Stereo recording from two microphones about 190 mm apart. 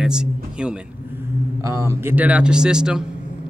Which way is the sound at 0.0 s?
5° right (ahead or behind).